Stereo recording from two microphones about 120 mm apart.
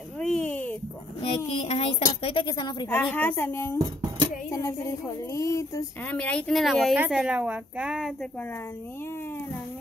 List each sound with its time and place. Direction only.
0.2 s a sound: 10° left (ahead or behind)
1.2 s child singing: 60° left (ahead or behind)
2.2 s speech: 45° left (ahead or behind)
2.9 s a woman's voice: 15° left (ahead or behind)
6.0 s a woman's voice: 10° left (ahead or behind); by 8.1 s 10° right (ahead or behind)